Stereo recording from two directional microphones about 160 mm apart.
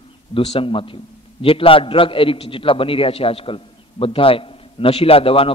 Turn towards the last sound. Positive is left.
turn(degrees=35)  # may be behind; listen again after turning